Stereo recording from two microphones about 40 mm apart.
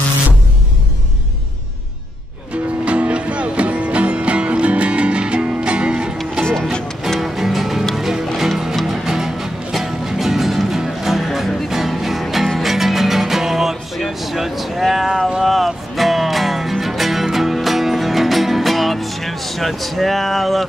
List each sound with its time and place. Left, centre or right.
2.5 s music: right
7.2 s music: centre
14.0 s a sound: centre
15.4 s music: centre